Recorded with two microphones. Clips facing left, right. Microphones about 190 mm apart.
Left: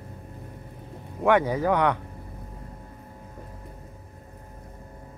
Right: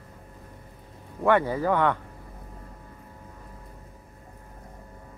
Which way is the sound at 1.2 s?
15° left (ahead or behind).